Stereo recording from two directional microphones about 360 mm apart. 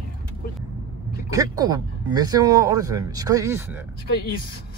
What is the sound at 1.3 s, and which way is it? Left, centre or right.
Speech, centre.